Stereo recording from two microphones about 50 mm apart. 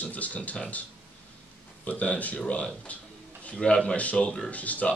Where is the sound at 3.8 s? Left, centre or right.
Left.